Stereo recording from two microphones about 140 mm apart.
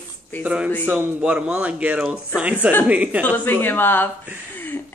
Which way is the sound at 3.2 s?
15° left (ahead or behind).